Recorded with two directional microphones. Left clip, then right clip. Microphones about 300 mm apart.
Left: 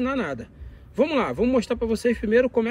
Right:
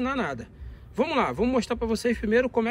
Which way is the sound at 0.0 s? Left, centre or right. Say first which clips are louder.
Left 2 dB; centre.